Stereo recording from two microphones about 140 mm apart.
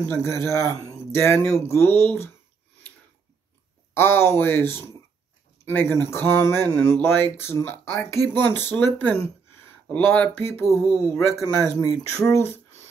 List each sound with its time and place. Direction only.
0.1 s a man's voice: 20° left (ahead or behind)
3.9 s a man's voice: 15° left (ahead or behind)